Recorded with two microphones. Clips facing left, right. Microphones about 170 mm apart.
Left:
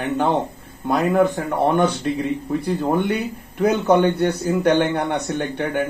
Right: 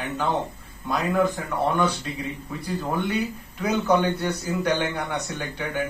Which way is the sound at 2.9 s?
60° left (ahead or behind).